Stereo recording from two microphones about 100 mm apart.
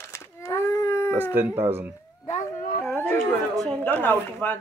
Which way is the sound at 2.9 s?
20° left (ahead or behind).